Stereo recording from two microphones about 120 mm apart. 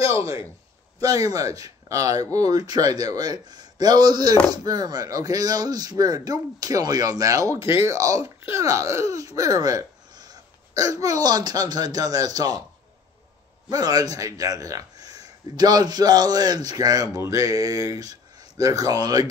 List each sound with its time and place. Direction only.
0.0 s a man's voice: 25° right (ahead or behind)
13.7 s speech: 30° right (ahead or behind)